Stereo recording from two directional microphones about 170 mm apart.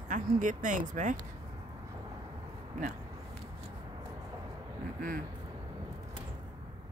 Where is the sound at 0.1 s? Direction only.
50° right (ahead or behind).